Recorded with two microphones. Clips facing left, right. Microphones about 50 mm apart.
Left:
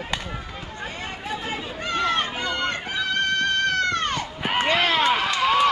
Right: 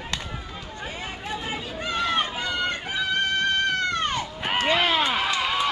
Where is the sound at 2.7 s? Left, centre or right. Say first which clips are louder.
Left 1 dB; centre.